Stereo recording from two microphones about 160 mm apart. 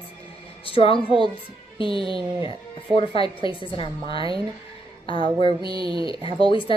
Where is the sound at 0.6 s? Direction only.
35° left (ahead or behind).